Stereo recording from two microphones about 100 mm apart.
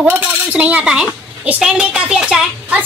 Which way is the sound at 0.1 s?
15° right (ahead or behind).